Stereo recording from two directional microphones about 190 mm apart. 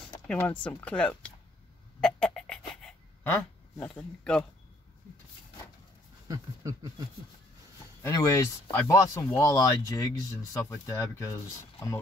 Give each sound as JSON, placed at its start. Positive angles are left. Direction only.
{"t": 0.3, "sound": "speech", "side_deg": 10}
{"t": 2.0, "sound": "a sound", "side_deg": 5}
{"t": 3.8, "sound": "speech", "side_deg": 5}
{"t": 6.2, "sound": "speech", "side_deg": -20}
{"t": 8.0, "sound": "speech", "side_deg": 15}